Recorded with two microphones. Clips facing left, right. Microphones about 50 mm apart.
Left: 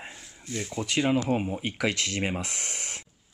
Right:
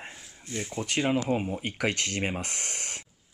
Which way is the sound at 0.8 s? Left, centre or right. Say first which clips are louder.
Left 2 dB; centre.